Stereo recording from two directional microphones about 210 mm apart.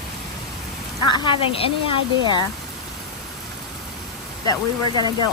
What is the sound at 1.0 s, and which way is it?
Speech, 20° left (ahead or behind).